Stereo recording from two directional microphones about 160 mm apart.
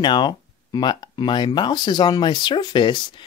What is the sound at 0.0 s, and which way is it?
Speech, 25° left (ahead or behind).